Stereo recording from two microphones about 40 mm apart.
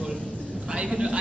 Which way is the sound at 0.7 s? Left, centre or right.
Right.